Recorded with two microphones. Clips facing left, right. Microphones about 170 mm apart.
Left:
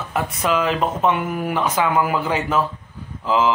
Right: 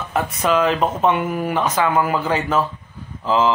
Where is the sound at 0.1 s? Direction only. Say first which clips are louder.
Right 2 dB; 5° left (ahead or behind).